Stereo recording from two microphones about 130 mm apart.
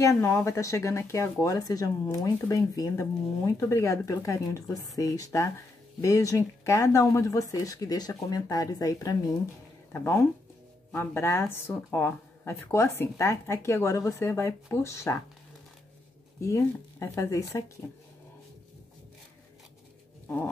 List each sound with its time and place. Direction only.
0.0 s speech: 20° left (ahead or behind)
16.3 s speech: 25° left (ahead or behind)